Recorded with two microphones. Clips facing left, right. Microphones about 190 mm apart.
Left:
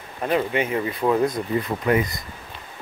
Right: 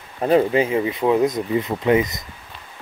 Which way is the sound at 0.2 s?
30° right (ahead or behind).